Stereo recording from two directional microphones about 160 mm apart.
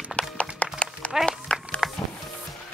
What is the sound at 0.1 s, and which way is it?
Music, 5° left (ahead or behind).